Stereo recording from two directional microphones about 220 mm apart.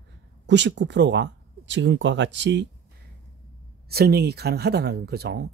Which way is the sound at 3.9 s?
45° right (ahead or behind).